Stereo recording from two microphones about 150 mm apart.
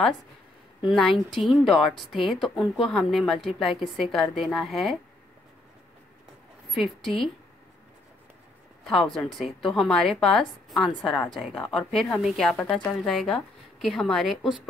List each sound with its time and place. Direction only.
0.8 s a woman's voice: centre (ahead or behind)
6.7 s a woman's voice: centre (ahead or behind)
8.8 s a woman's voice: 5° left (ahead or behind)